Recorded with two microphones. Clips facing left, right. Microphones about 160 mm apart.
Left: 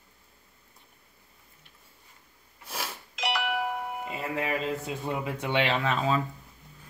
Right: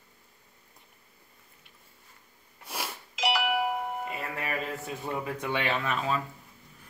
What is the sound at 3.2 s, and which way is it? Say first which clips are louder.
Doorbell: right 2 dB; centre (ahead or behind).